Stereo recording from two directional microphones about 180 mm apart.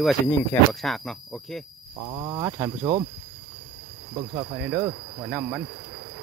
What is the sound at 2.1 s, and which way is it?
Speech, 25° right (ahead or behind).